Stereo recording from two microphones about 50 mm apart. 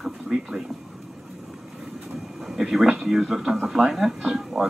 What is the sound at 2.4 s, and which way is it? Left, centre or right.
Speech, centre.